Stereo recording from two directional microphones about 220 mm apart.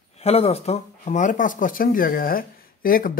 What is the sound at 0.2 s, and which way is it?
Speech, 25° left (ahead or behind).